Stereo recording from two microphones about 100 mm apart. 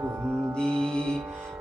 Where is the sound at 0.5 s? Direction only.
5° left (ahead or behind).